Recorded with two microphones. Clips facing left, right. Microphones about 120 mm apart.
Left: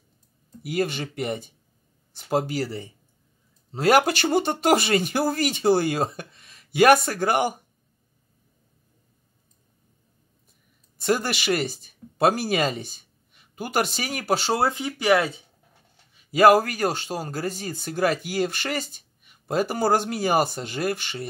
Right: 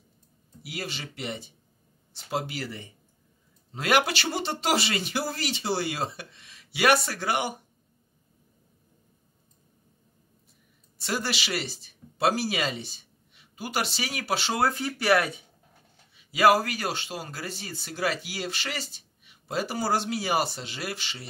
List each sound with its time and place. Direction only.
0.6 s a man's voice: 50° left (ahead or behind)
11.0 s speech: 50° left (ahead or behind)
14.6 s speech: 20° left (ahead or behind)
16.2 s a man's voice: 45° left (ahead or behind)